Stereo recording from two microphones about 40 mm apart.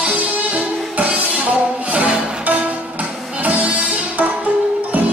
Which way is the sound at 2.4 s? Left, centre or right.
Right.